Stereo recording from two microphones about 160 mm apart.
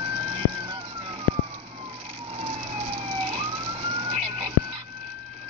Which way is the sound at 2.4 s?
35° right (ahead or behind).